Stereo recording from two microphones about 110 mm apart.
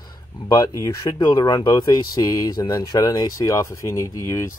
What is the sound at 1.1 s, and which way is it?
Speech, 40° left (ahead or behind).